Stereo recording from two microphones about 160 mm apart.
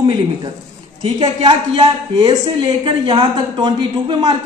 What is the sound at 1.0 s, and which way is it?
A man's voice, 35° right (ahead or behind).